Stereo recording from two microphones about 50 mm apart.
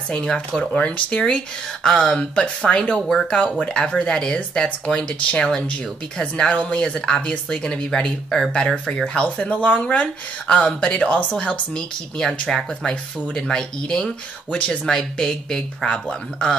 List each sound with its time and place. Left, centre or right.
0.1 s speech: centre
6.5 s speech: left; by 12.9 s centre
13.3 s speech: centre
14.5 s speech: left
14.9 s speech: centre